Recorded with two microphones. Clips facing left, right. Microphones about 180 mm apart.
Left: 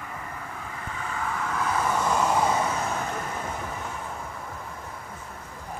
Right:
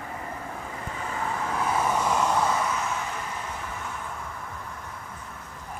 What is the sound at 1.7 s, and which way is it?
Vehicle, 15° right (ahead or behind).